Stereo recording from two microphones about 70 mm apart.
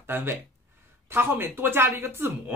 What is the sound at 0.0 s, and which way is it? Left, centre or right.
Speech, right.